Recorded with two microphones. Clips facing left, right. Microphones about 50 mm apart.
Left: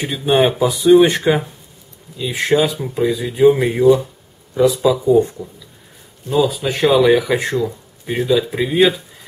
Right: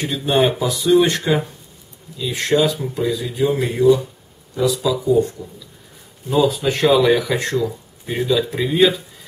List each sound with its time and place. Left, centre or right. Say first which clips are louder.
0.0 s speech: left 2 dB; centre
6.3 s speech: even; centre